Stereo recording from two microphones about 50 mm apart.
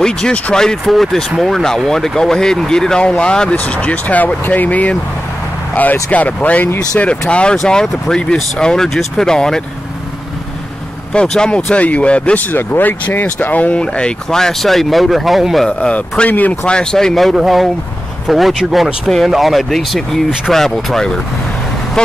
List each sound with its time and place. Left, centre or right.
0.0 s speech: centre
0.8 s speech: centre; by 4.9 s left
6.0 s speech: left; by 9.6 s centre
11.1 s speech: centre
12.4 s speech: left
14.4 s speech: centre
16.3 s speech: left
16.6 s speech: centre